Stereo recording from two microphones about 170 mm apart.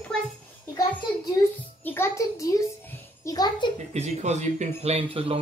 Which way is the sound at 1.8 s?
15° left (ahead or behind).